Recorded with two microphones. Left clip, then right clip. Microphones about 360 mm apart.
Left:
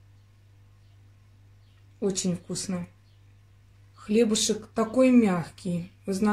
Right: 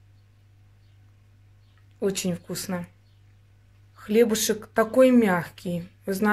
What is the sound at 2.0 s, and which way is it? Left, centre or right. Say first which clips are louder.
Speech: right 2 dB; right.